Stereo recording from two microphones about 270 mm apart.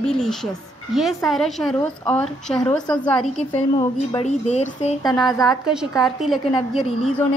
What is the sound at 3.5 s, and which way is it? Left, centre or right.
A woman's voice, centre.